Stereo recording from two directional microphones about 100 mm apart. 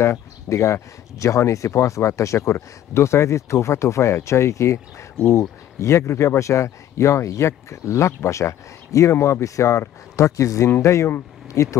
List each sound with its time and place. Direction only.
0.0 s speech: 30° left (ahead or behind)